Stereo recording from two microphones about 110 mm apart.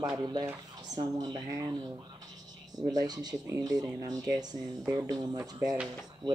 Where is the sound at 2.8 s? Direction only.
35° right (ahead or behind).